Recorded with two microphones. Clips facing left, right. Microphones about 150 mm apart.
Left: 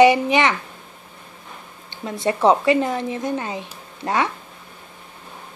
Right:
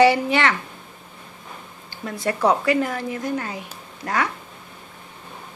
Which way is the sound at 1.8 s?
25° left (ahead or behind).